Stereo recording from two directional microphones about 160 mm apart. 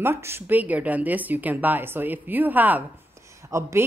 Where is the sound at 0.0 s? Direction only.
15° right (ahead or behind).